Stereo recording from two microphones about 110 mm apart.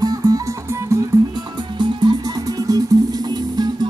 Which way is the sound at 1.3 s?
40° right (ahead or behind).